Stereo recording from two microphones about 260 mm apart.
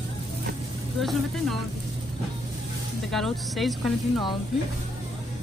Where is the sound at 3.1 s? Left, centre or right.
Centre.